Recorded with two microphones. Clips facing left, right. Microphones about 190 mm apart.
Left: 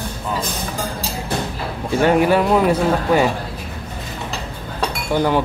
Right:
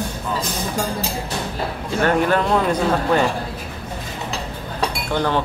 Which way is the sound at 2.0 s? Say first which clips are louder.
Left 3 dB; 10° left (ahead or behind).